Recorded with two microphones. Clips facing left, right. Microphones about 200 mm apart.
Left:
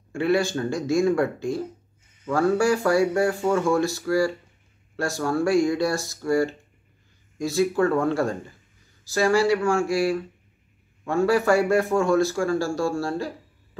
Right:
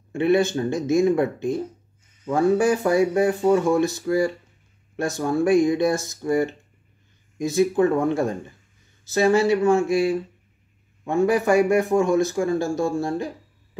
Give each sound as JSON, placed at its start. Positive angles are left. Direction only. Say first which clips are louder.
{"t": 0.1, "sound": "a man's voice", "louder": "right 3 dB", "side_deg": -20}